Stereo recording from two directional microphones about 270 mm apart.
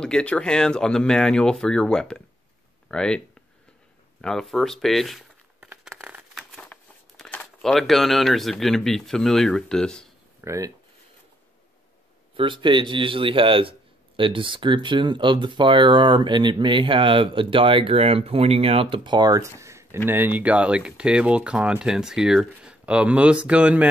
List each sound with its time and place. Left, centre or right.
0.0 s speech: centre
4.2 s crumpling: centre
10.4 s speech: centre
12.4 s speech: centre